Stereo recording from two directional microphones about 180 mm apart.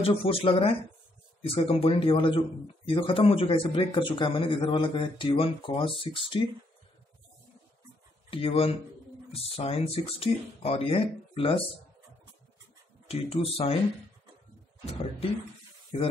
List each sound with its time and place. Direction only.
0.0 s a man's voice: 30° left (ahead or behind)
8.3 s speech: 30° left (ahead or behind)
13.1 s speech: 35° left (ahead or behind)